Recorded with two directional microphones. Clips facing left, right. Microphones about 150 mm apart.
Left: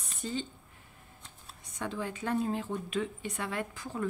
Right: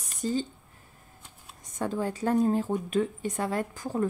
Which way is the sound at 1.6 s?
45° right (ahead or behind).